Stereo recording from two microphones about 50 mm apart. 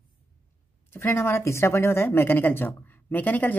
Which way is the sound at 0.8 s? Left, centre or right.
Left.